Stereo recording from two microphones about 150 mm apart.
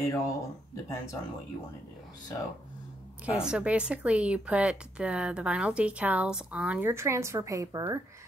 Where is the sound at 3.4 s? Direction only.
5° right (ahead or behind).